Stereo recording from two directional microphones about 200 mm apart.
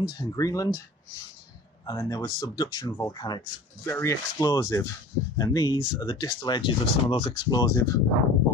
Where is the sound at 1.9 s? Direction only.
20° left (ahead or behind).